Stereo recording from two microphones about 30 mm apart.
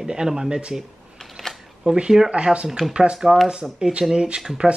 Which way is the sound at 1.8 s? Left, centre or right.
Right.